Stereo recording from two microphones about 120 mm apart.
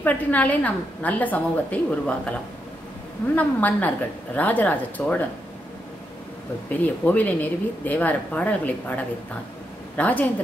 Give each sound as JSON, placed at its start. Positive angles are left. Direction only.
{"t": 0.0, "sound": "speech", "side_deg": 15}
{"t": 3.3, "sound": "speech", "side_deg": 15}
{"t": 6.7, "sound": "speech", "side_deg": 15}